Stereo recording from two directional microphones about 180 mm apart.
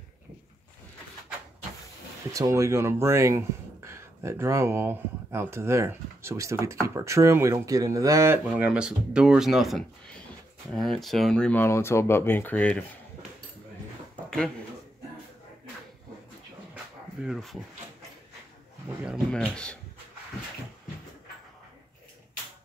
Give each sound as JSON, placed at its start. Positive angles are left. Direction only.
{"t": 2.3, "sound": "speech", "side_deg": -15}
{"t": 8.5, "sound": "speech", "side_deg": -5}
{"t": 16.7, "sound": "a sound", "side_deg": -5}
{"t": 19.0, "sound": "speech", "side_deg": 0}